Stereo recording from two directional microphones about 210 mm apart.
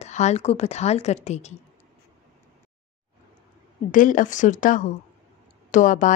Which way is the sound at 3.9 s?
40° left (ahead or behind).